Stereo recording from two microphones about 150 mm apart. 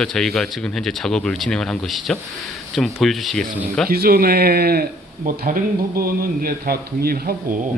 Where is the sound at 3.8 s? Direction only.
85° right.